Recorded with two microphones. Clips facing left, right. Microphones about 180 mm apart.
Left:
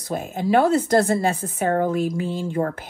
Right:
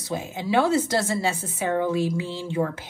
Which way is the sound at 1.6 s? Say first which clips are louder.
Left 2 dB; 40° left (ahead or behind).